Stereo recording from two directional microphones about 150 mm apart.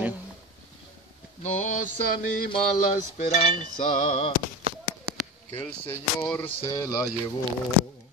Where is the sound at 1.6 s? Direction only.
60° left (ahead or behind).